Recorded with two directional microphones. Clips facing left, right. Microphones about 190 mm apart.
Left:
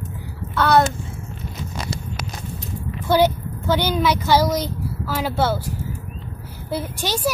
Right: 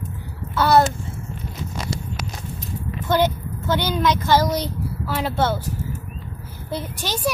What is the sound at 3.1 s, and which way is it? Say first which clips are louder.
Speech: left 3 dB; 10° left (ahead or behind).